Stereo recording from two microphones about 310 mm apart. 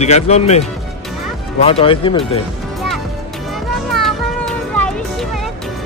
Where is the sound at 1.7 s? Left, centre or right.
Centre.